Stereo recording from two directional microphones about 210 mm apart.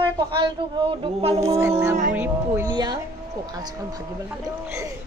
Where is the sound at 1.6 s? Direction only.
10° right (ahead or behind).